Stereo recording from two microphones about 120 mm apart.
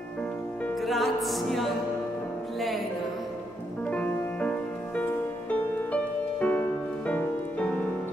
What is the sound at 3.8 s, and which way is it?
Music, 15° left (ahead or behind).